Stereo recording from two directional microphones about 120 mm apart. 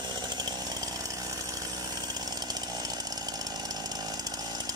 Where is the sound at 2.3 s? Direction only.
35° right (ahead or behind).